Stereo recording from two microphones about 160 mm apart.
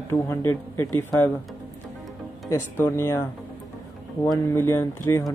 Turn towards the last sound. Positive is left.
turn(degrees=15)  # may be behind; listen again after turning